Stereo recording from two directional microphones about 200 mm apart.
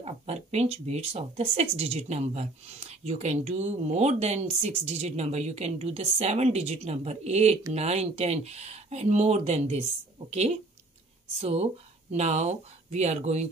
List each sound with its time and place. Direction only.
0.0 s speech: 30° right (ahead or behind)